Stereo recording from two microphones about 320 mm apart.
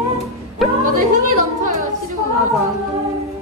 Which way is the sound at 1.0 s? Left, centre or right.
Right.